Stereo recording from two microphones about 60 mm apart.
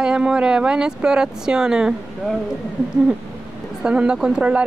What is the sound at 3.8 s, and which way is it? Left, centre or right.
Speech, centre.